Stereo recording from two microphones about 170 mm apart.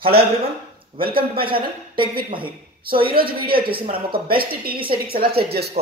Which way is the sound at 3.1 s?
60° right (ahead or behind).